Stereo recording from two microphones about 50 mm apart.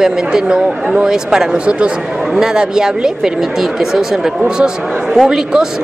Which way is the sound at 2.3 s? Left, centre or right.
Centre.